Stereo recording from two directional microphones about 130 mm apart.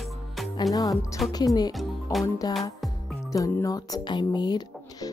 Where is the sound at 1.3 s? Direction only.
30° left (ahead or behind).